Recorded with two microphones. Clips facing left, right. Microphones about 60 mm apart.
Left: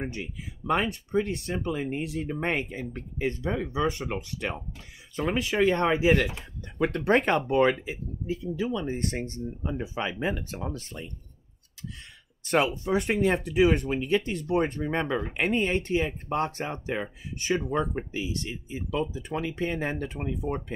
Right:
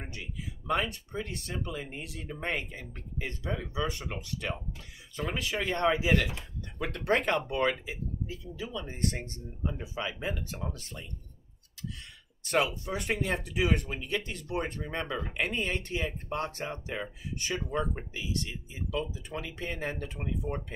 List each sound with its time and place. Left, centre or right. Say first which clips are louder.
0.0 s speech: left 6 dB; left
9.7 s speech: left 4 dB; left
10.7 s speech: left 6 dB; left
12.4 s speech: left 4 dB; left